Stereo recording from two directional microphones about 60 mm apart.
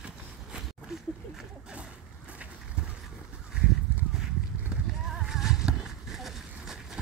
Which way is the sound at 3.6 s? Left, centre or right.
Centre.